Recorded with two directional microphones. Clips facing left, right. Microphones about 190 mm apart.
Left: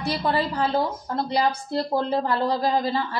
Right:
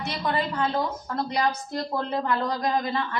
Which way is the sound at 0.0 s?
35° left (ahead or behind).